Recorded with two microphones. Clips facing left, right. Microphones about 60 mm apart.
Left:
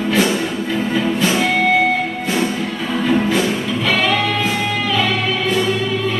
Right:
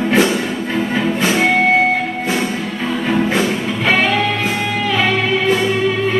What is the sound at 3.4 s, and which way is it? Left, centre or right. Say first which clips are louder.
Music: right 2 dB; right.